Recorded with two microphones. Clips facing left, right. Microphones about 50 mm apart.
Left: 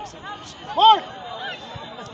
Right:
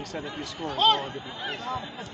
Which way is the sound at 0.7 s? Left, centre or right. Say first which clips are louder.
Left 9 dB; left.